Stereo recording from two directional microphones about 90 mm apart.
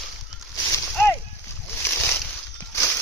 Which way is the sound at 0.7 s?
25° left (ahead or behind).